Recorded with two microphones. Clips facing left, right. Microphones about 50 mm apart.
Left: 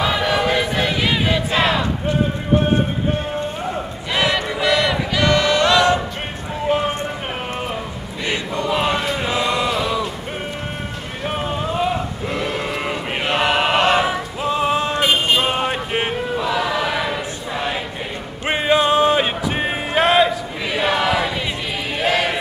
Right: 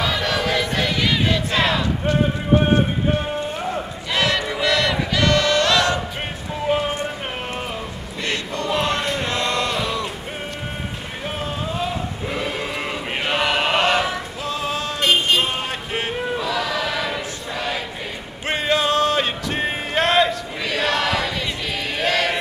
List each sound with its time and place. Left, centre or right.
0.0 s choir: centre
4.1 s choir: centre
6.7 s a sound: centre
8.3 s choir: centre
9.0 s chant: centre
11.2 s boat: left
12.3 s chant: centre; by 15.0 s left
15.2 s a sound: left
16.3 s chant: centre
18.5 s a sound: centre
21.9 s choir: centre